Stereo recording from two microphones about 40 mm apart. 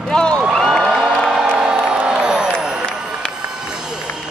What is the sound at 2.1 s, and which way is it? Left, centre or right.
Crowd, centre.